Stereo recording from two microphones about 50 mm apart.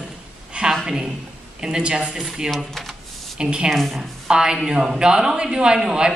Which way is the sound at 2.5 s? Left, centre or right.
Centre.